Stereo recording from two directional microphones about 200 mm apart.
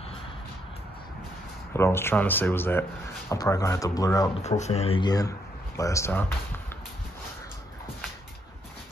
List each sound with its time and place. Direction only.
1.7 s speech: 10° left (ahead or behind)
4.4 s speech: 35° left (ahead or behind); by 6.3 s 10° left (ahead or behind)